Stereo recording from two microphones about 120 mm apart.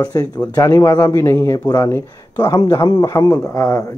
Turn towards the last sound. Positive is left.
turn(degrees=25)  # may be behind; listen again after turning